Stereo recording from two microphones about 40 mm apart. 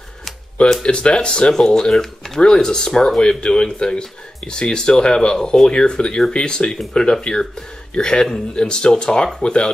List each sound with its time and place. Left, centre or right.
0.8 s speech: left